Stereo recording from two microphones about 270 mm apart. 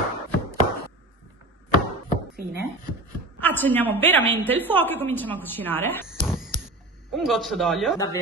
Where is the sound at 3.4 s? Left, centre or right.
Centre.